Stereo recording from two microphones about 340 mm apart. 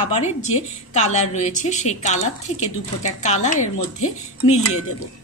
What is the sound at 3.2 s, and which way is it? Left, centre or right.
Speech, centre.